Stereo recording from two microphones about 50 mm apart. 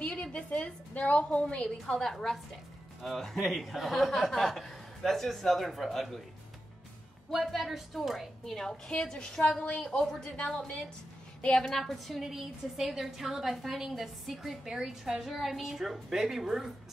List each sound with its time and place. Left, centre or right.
0.1 s a woman's voice: centre
2.0 s a woman's voice: centre
7.3 s a woman's voice: centre
8.5 s a woman's voice: centre
11.5 s a woman's voice: centre